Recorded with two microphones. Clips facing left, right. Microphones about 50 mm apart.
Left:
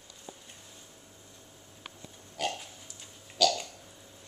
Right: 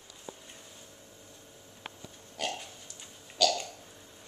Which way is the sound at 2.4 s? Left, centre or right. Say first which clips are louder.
Left 2 dB; centre.